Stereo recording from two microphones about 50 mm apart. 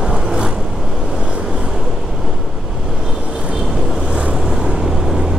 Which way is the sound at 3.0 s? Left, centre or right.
Centre.